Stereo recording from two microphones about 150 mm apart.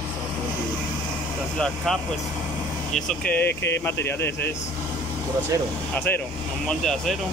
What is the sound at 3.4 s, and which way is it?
Speech, 15° left (ahead or behind).